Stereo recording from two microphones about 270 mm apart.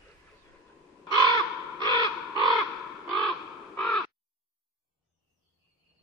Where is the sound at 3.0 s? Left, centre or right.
Centre.